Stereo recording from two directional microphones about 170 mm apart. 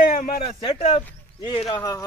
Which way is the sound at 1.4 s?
35° left (ahead or behind).